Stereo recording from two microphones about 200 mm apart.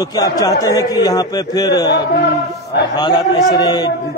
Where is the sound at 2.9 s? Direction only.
20° left (ahead or behind).